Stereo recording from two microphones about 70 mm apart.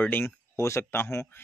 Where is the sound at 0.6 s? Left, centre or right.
Left.